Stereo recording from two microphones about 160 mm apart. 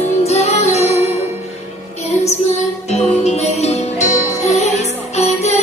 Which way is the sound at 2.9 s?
45° left (ahead or behind).